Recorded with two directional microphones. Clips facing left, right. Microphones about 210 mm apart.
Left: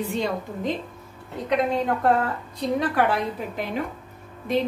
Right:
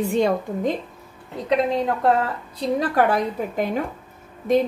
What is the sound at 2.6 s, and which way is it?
A woman's voice, 40° right (ahead or behind).